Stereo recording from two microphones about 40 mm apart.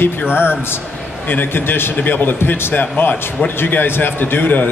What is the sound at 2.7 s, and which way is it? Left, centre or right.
A man's voice, left.